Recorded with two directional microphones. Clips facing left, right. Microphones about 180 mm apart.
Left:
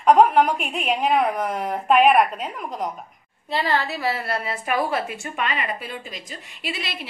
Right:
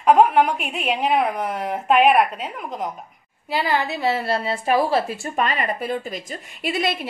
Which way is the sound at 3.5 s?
15° right (ahead or behind).